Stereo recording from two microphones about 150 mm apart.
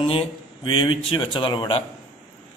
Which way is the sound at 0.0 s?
35° left (ahead or behind).